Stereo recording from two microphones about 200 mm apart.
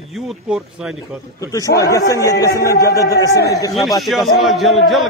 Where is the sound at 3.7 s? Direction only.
Centre (ahead or behind).